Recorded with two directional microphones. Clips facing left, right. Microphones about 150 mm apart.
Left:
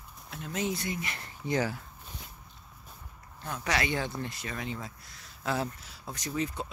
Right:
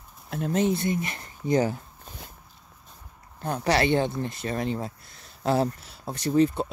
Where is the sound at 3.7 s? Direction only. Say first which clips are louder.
Right 8 dB; 30° right (ahead or behind).